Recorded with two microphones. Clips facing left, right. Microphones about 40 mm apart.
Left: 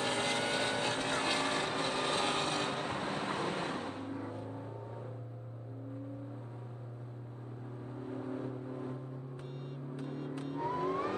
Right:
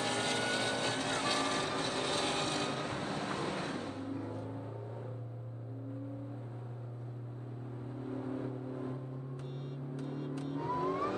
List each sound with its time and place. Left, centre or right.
0.0 s vehicle: centre
10.4 s vehicle: centre